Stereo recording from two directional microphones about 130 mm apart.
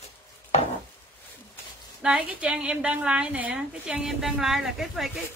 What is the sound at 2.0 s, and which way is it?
A woman's voice, 10° right (ahead or behind).